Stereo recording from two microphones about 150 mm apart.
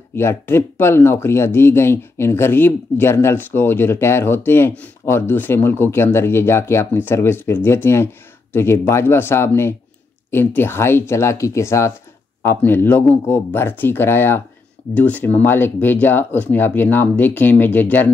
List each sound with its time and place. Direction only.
0.1 s speech: 15° left (ahead or behind)